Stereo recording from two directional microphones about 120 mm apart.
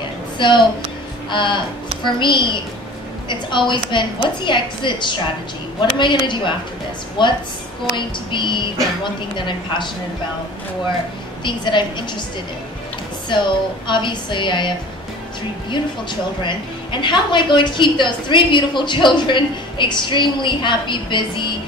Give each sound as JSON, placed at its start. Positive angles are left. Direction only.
{"t": 0.4, "sound": "a woman's voice", "side_deg": 40}
{"t": 11.4, "sound": "a woman's voice", "side_deg": 40}
{"t": 13.3, "sound": "a woman's voice", "side_deg": 40}
{"t": 15.7, "sound": "a woman's voice", "side_deg": 40}